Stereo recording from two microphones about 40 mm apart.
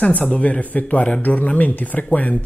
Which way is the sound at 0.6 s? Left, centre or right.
Left.